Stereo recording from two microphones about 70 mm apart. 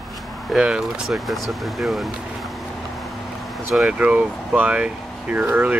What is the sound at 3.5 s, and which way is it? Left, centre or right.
Vehicle, centre.